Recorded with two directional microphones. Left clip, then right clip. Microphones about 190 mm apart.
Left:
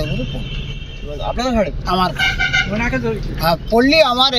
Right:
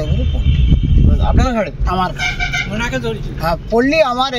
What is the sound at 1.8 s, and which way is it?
Speech, 10° right (ahead or behind).